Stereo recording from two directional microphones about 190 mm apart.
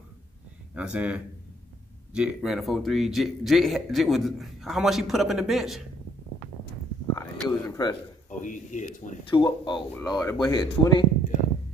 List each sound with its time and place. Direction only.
0.7 s speech: 5° right (ahead or behind)
7.2 s a sound: 15° left (ahead or behind)
8.3 s speech: 40° left (ahead or behind)
9.3 s speech: 25° left (ahead or behind)